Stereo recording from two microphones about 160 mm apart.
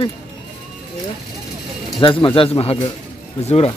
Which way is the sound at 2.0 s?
30° left (ahead or behind).